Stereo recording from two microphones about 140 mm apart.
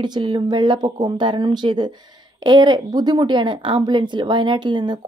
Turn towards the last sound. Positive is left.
turn(degrees=-35)  # may be behind; listen again after turning